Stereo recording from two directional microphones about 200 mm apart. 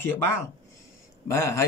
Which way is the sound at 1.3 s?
15° left (ahead or behind).